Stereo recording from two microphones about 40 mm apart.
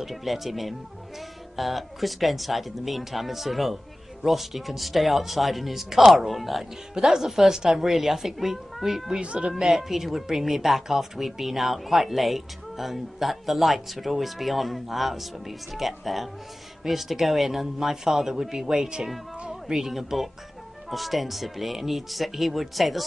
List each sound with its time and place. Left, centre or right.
0.0 s speech: centre
9.2 s speech: right
9.5 s speech: centre